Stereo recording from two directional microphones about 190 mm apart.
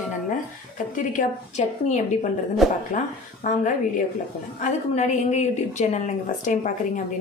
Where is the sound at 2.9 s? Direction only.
45° left (ahead or behind).